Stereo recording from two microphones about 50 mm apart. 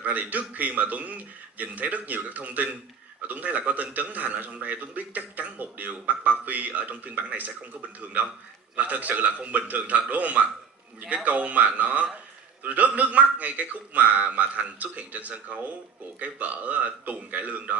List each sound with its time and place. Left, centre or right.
0.0 s a man's voice: right
8.7 s a man's voice: right